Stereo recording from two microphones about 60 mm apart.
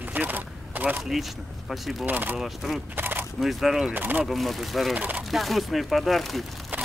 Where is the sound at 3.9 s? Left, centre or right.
Right.